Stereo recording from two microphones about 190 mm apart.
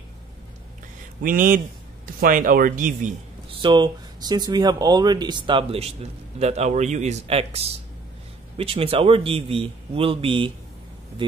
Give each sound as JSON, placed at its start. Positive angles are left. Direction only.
{"t": 1.2, "sound": "speech", "side_deg": -45}
{"t": 3.6, "sound": "speech", "side_deg": -20}